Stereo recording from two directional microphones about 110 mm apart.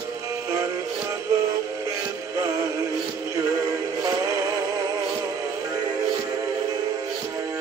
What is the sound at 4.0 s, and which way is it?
Music, 35° right (ahead or behind).